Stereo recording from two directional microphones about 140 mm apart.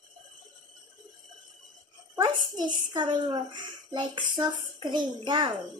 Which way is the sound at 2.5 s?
35° right (ahead or behind).